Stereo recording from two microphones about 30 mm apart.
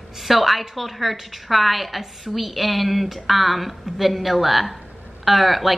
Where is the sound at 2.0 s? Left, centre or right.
Centre.